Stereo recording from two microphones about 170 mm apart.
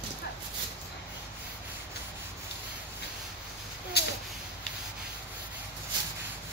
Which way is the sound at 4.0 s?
75° left (ahead or behind).